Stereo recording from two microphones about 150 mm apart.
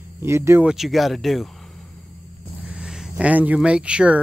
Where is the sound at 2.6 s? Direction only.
5° right (ahead or behind).